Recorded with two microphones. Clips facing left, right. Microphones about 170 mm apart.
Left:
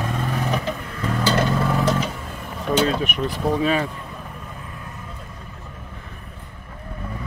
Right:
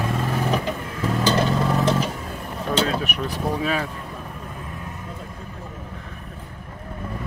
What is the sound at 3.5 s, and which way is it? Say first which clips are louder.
Speech: left 5 dB; centre (ahead or behind).